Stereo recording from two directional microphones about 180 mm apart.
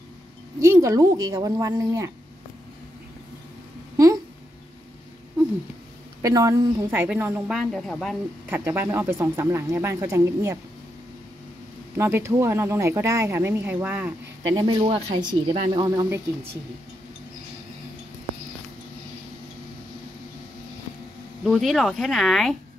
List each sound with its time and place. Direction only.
0.6 s speech: 15° right (ahead or behind)
3.9 s a sound: 20° right (ahead or behind)
6.2 s speech: 20° right (ahead or behind); by 8.2 s centre (ahead or behind)
8.5 s speech: 10° right (ahead or behind)
12.0 s speech: 15° right (ahead or behind)
14.5 s speech: 25° right (ahead or behind)
21.5 s speech: centre (ahead or behind)